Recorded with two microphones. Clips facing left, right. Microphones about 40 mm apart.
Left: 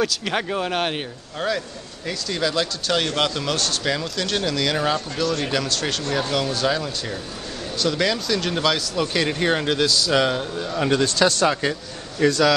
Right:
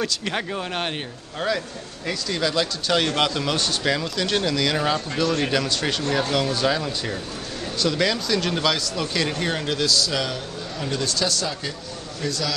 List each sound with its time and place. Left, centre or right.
0.0 s speech: centre
5.1 s speech: centre
10.1 s a man's voice: left
11.2 s speech: left
12.3 s speech: centre